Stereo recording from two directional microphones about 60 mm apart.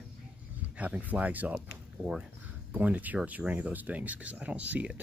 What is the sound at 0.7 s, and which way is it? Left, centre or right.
Speech, right.